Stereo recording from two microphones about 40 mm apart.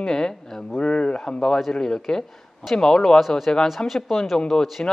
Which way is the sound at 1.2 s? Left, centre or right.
Centre.